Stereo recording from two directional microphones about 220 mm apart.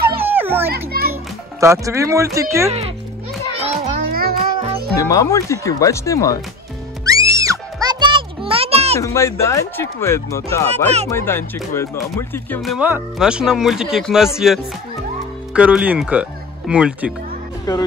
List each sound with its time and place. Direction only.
0.2 s children playing: 10° right (ahead or behind)
1.6 s speech: 15° right (ahead or behind)
3.5 s children playing: 30° right (ahead or behind)
4.1 s music: 40° right (ahead or behind)
4.9 s speech: 15° left (ahead or behind)
7.1 s music: 15° right (ahead or behind)
9.0 s speech: 15° left (ahead or behind)
12.7 s speech: 5° right (ahead or behind)
17.7 s speech: 15° left (ahead or behind)